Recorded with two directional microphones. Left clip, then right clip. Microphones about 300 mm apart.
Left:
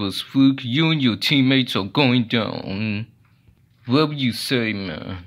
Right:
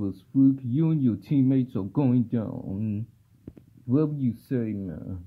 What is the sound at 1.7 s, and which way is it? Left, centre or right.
Speech, left.